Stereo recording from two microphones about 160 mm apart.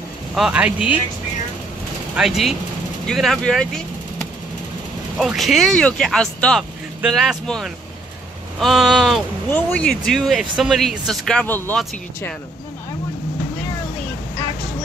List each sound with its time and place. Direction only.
0.3 s speech: 5° right (ahead or behind)
2.1 s speech: centre (ahead or behind)
5.2 s speech: centre (ahead or behind)